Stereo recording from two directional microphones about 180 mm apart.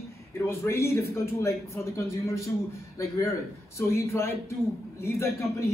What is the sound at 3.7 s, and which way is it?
A man's voice, 15° left (ahead or behind).